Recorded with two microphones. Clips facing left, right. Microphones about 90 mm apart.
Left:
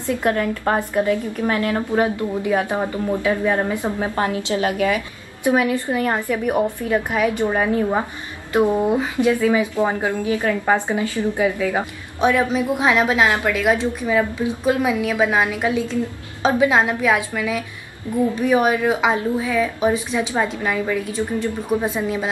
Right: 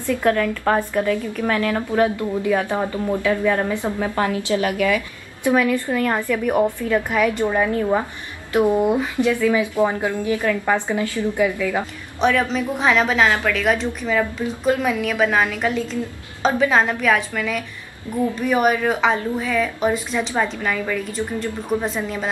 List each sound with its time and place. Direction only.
0.0 s a woman's voice: 20° left (ahead or behind)
8.9 s a woman's voice: 20° left (ahead or behind)
18.7 s a woman's voice: 10° left (ahead or behind)